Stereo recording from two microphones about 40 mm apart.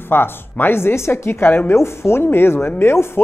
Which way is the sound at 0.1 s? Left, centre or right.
Left.